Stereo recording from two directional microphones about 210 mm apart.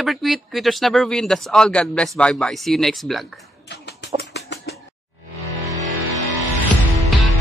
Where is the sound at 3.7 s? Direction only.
55° left (ahead or behind).